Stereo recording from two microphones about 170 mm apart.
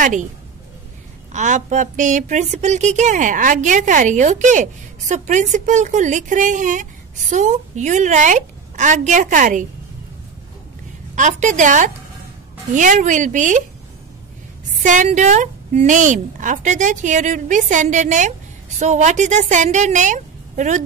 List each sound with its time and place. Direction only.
0.0 s a woman's voice: 45° right (ahead or behind)
1.3 s a woman's voice: 45° right (ahead or behind)
11.1 s a woman's voice: 45° right (ahead or behind)
14.8 s a woman's voice: 45° right (ahead or behind)